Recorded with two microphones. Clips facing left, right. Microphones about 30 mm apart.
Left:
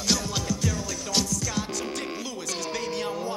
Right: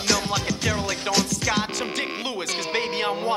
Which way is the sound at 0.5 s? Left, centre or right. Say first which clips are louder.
Right 4 dB; right.